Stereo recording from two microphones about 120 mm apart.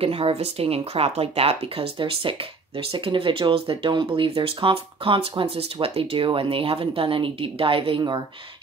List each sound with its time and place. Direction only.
0.0 s speech: 50° right (ahead or behind)